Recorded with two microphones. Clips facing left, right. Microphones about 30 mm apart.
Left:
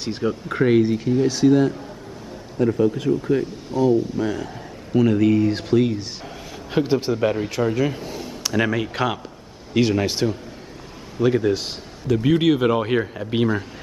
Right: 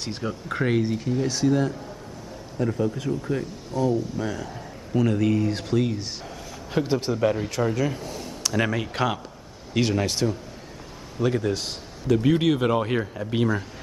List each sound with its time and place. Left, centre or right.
0.0 s a man's voice: centre